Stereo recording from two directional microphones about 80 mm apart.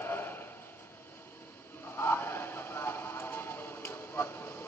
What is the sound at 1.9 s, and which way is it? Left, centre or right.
Radio, left.